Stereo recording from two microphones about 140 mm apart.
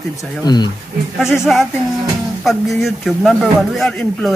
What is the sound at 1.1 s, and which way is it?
Speech, 5° right (ahead or behind).